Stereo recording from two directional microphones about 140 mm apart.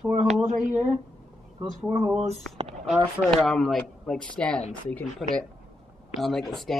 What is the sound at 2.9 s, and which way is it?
Speech, centre (ahead or behind).